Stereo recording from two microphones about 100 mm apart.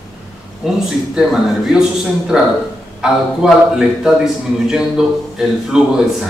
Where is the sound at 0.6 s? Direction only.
5° right (ahead or behind).